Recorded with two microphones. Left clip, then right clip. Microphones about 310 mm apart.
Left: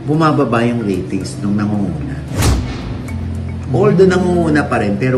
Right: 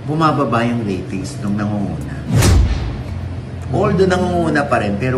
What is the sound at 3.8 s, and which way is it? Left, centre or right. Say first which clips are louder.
A man's voice: left 4 dB; centre.